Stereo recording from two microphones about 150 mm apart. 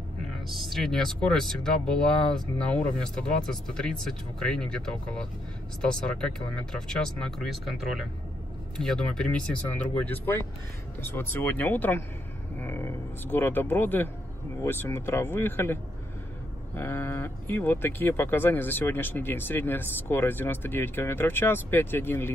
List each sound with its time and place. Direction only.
0.5 s speech: centre (ahead or behind)